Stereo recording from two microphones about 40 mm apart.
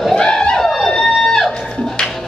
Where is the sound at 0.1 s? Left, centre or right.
Left.